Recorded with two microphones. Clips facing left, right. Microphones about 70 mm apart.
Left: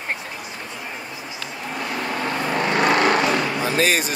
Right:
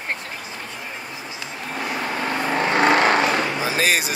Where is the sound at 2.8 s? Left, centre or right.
Right.